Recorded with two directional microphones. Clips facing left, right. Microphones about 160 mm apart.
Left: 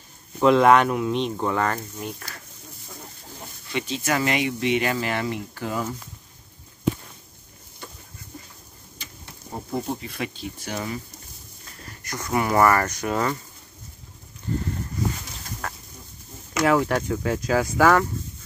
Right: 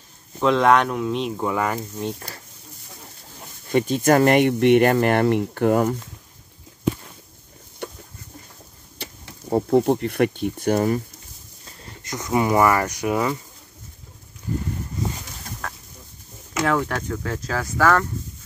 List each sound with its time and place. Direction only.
0.4 s speech: 5° left (ahead or behind)
2.0 s speech: 25° right (ahead or behind)
3.6 s speech: 50° right (ahead or behind)
7.8 s a sound: 65° right (ahead or behind)
8.9 s speech: 70° right (ahead or behind); by 11.0 s 50° right (ahead or behind)
12.0 s speech: 20° right (ahead or behind)
15.6 s chicken: 5° left (ahead or behind)
16.6 s speech: 10° left (ahead or behind)